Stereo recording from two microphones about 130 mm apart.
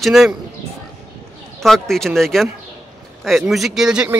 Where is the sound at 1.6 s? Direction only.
5° left (ahead or behind).